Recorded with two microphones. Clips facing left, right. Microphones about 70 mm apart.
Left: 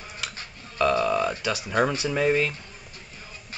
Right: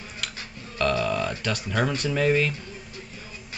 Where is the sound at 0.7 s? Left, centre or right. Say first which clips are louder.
Left 2 dB; centre.